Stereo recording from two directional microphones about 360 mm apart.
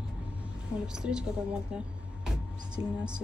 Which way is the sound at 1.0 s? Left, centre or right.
Centre.